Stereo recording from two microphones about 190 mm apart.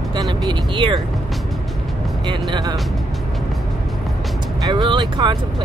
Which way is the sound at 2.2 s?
25° right (ahead or behind).